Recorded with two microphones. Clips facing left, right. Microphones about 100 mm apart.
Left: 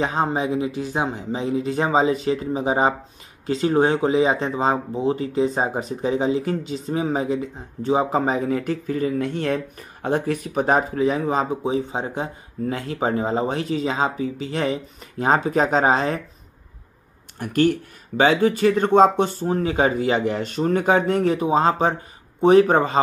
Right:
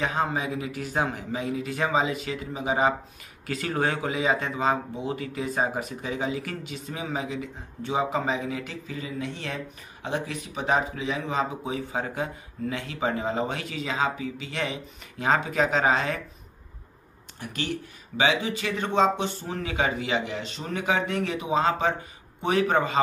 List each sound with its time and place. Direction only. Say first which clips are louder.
0.0 s speech: left 5 dB; 30° left (ahead or behind)
17.4 s speech: left 13 dB; 50° left (ahead or behind)